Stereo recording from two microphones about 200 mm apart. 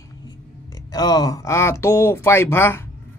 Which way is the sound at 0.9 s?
20° left (ahead or behind).